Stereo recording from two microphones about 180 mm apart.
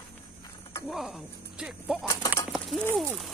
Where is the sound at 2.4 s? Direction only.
Centre (ahead or behind).